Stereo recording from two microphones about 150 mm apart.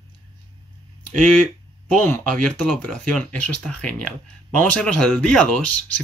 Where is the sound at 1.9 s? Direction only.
10° left (ahead or behind).